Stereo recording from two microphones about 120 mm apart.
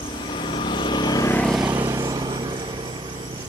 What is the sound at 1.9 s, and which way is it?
Vehicle, 30° right (ahead or behind).